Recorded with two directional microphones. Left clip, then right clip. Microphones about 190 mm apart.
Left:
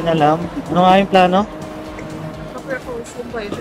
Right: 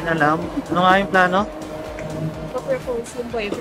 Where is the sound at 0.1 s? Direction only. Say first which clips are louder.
Left 3 dB; 15° left (ahead or behind).